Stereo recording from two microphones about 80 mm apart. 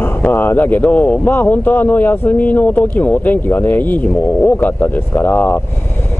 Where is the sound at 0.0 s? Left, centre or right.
Left.